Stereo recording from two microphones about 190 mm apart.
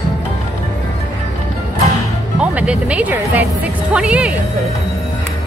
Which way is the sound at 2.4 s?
5° right (ahead or behind).